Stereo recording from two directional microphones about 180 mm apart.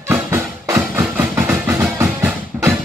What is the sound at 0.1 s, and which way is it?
Music, 15° right (ahead or behind).